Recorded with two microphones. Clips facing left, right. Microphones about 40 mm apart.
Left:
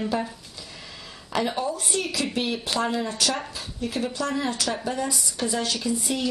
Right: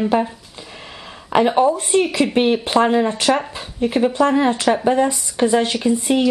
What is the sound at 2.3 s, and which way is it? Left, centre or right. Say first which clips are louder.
A woman's voice: right 13 dB; right.